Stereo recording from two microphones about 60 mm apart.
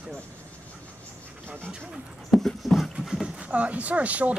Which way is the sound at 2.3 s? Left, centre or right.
Centre.